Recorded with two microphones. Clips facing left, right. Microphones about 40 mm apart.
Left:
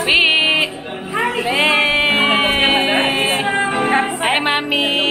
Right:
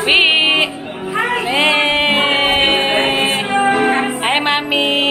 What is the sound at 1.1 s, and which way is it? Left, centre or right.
Music, right.